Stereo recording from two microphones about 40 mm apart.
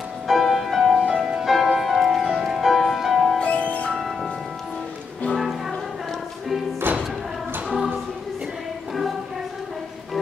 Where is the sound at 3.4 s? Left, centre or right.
Left.